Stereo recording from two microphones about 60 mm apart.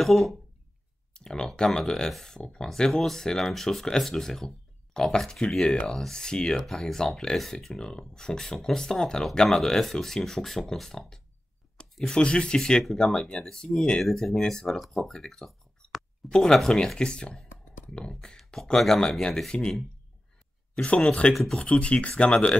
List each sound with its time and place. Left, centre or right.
0.0 s speech: centre
14.0 s speech: centre
20.7 s speech: centre
21.3 s speech: centre
21.5 s speech: centre